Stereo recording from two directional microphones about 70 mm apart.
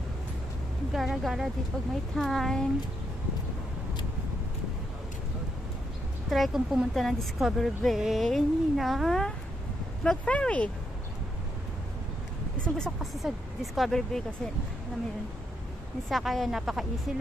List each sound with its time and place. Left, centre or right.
0.9 s speech: centre
6.3 s speech: centre
10.0 s speech: centre
12.6 s speech: centre
13.0 s speech: centre
16.1 s speech: centre